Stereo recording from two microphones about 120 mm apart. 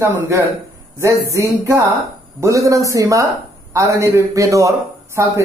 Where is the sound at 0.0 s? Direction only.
25° right (ahead or behind).